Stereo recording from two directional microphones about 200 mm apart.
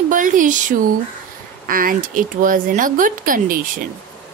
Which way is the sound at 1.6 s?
45° right (ahead or behind).